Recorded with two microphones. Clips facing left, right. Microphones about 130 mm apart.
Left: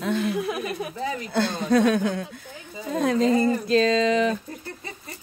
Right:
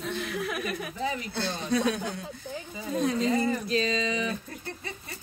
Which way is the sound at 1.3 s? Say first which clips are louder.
Left 12 dB; 50° left (ahead or behind).